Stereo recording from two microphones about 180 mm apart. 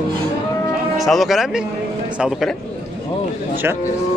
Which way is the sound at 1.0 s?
Centre (ahead or behind).